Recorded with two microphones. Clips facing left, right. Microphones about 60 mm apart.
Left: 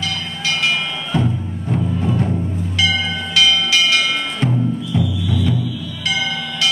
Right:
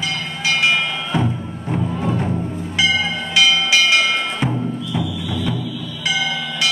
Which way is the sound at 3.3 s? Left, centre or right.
Centre.